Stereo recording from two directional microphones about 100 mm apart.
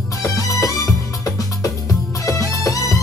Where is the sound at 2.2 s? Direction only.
35° left (ahead or behind).